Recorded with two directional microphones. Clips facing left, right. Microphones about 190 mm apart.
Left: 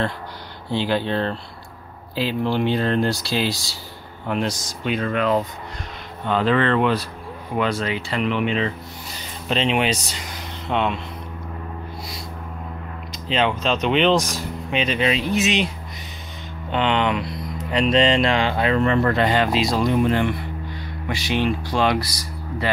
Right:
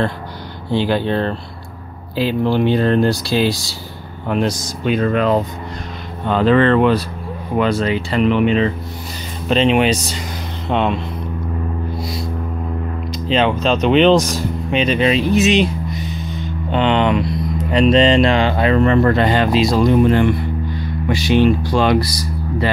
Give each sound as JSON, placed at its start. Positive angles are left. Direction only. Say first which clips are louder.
{"t": 0.7, "sound": "speech", "louder": "right 5 dB", "side_deg": -50}
{"t": 10.7, "sound": "speech", "louder": "right 5 dB", "side_deg": -35}
{"t": 13.3, "sound": "speech", "louder": "right 5 dB", "side_deg": -40}
{"t": 16.7, "sound": "speech", "louder": "right 5 dB", "side_deg": -35}